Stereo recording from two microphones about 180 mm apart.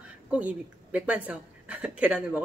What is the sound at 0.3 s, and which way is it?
Speech, 10° right (ahead or behind).